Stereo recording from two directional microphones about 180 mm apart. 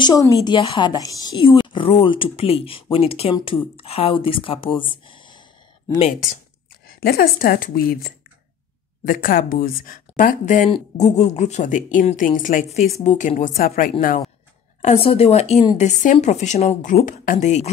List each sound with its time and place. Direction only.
0.0 s speech: 20° left (ahead or behind)
7.0 s a woman's voice: 55° left (ahead or behind)
14.8 s speech: 35° left (ahead or behind)